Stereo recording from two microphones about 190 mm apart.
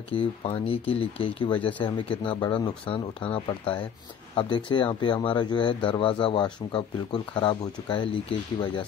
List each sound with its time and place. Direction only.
0.1 s speech: 30° left (ahead or behind)